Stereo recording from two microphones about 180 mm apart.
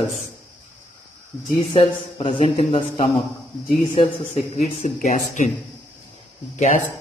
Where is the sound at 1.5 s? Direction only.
25° left (ahead or behind); by 5.5 s 45° left (ahead or behind).